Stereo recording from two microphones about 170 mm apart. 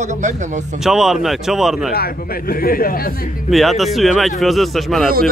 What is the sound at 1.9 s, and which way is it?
Speech, 65° left (ahead or behind).